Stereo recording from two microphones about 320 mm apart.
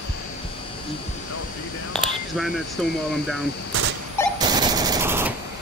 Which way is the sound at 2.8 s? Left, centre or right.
Centre.